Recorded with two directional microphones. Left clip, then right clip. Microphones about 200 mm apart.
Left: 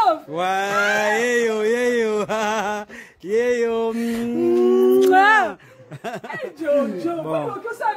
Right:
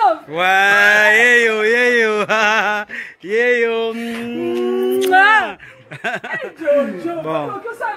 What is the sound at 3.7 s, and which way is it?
Mantra, 45° left (ahead or behind).